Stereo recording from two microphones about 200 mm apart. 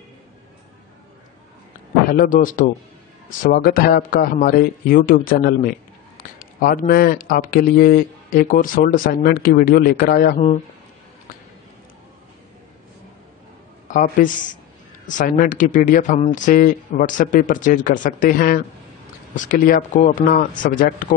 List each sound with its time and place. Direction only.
2.0 s speech: 45° left (ahead or behind)
13.8 s speech: 40° left (ahead or behind)